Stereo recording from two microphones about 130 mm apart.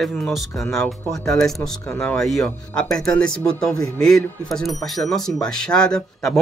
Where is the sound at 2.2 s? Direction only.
Centre (ahead or behind).